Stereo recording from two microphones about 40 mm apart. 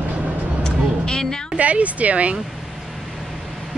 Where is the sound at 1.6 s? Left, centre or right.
Right.